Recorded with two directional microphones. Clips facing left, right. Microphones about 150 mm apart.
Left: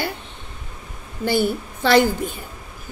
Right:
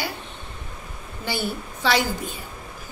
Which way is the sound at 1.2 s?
50° left (ahead or behind).